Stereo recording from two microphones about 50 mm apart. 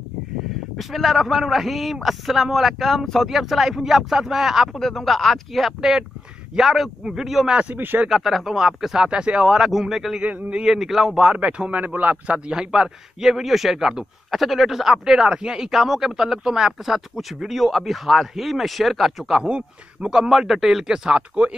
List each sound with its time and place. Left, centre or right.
0.7 s a man's voice: centre
4.7 s a man's voice: centre
7.7 s a man's voice: right
8.1 s speech: centre
9.0 s speech: right
9.5 s speech: centre
10.2 s speech: right
10.6 s a man's voice: centre
11.2 s a man's voice: right
12.4 s a man's voice: centre